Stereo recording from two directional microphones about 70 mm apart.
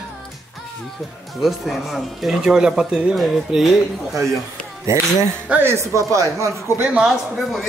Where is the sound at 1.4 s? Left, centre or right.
Centre.